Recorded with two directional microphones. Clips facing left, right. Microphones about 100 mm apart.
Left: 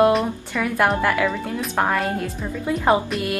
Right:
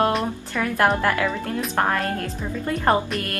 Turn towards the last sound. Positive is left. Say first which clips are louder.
# left 2 dB
turn(degrees=5)  # may be behind; listen again after turning